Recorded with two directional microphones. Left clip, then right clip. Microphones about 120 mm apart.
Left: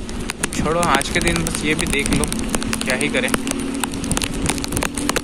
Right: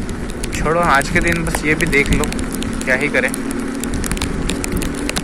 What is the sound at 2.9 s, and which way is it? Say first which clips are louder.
Speech: right 5 dB; 15° left (ahead or behind).